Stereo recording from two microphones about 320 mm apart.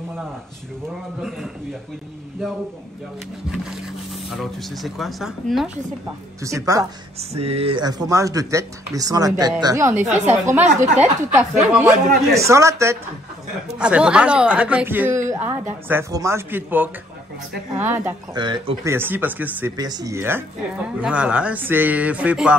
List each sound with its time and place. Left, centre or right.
1.2 s a man's voice: centre
4.1 s a man's voice: centre